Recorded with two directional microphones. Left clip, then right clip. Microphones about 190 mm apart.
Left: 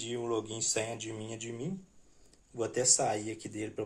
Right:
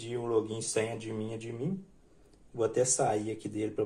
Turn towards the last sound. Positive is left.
turn(degrees=10)  # may be behind; listen again after turning